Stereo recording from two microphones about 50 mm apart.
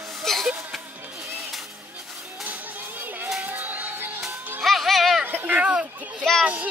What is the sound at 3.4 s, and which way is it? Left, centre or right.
Music, right.